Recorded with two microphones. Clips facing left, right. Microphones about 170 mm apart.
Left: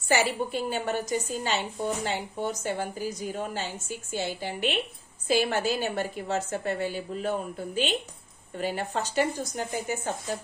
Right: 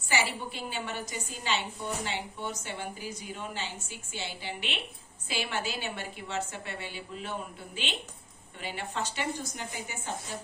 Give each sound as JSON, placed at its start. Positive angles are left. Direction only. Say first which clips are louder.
{"t": 0.1, "sound": "a woman's voice", "louder": "left 6 dB", "side_deg": 45}